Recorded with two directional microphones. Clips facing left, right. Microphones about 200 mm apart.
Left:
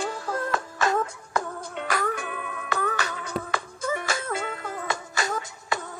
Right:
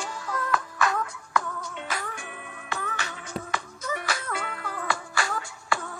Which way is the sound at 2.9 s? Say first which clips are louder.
Left 5 dB; 40° left (ahead or behind).